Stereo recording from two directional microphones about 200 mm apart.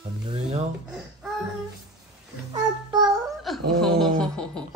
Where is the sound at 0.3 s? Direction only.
35° right (ahead or behind).